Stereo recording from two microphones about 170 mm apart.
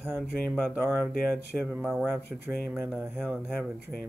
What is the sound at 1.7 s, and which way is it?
Speech, 5° right (ahead or behind).